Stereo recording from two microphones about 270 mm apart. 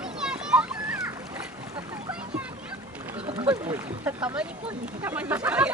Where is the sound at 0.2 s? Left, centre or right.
Centre.